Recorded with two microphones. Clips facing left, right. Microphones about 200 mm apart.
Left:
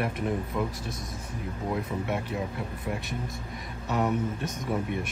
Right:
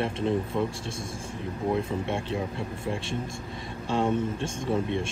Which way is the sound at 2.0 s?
25° right (ahead or behind).